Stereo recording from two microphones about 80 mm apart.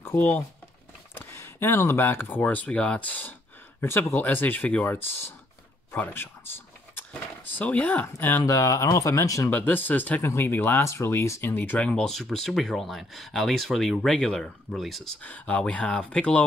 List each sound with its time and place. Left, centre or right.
0.0 s speech: left
5.9 s a sound: left
8.4 s speech: left
9.5 s speech: left
10.2 s speech: left
11.5 s speech: left; by 15.0 s centre
15.2 s speech: centre